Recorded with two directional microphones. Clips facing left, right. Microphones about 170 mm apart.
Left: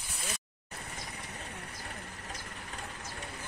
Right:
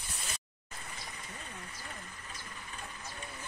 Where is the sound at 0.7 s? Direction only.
60° left (ahead or behind).